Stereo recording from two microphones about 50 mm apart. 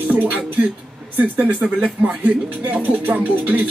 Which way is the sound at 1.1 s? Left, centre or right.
Right.